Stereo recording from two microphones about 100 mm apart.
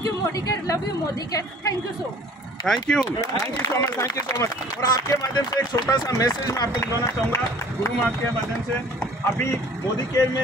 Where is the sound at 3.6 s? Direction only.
30° left (ahead or behind).